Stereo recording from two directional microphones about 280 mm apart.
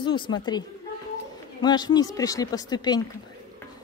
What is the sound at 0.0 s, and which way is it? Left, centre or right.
Speech, centre.